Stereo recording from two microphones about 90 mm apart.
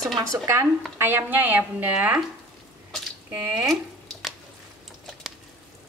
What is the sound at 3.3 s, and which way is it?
Speech, 15° right (ahead or behind).